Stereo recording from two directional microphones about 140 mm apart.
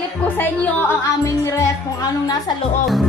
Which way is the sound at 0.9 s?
20° left (ahead or behind).